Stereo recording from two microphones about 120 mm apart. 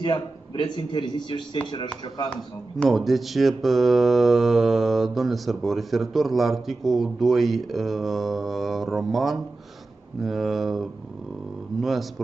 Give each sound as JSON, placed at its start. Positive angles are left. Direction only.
{"t": 0.0, "sound": "a man's voice", "side_deg": 40}
{"t": 2.8, "sound": "mantra", "side_deg": 0}